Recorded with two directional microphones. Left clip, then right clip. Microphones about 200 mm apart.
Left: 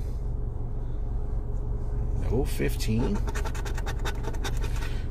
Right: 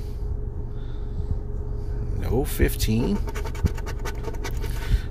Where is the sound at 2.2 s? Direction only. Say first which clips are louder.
Right 4 dB; 35° right (ahead or behind).